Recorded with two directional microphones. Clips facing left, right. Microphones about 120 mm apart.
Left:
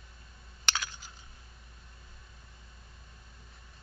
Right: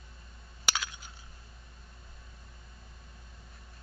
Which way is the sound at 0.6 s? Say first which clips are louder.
Right 1 dB; 5° right (ahead or behind).